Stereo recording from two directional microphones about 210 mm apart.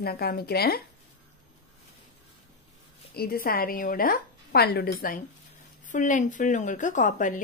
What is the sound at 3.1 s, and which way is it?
A woman's voice, 45° left (ahead or behind).